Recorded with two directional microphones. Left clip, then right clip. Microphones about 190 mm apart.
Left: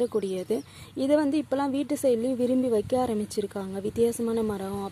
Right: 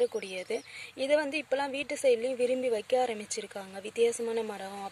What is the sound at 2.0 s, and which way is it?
Speech, 45° left (ahead or behind).